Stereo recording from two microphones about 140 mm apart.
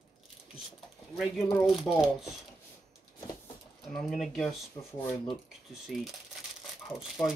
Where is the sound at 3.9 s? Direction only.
5° left (ahead or behind).